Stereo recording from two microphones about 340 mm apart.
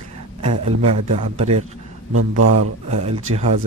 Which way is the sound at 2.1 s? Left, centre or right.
Right.